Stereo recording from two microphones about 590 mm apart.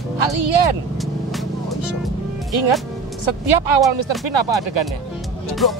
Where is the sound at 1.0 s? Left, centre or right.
Centre.